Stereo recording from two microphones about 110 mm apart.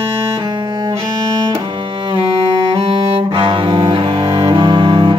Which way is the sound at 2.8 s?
55° right (ahead or behind).